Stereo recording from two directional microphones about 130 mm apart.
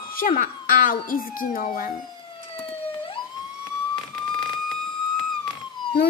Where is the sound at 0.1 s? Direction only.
90° left.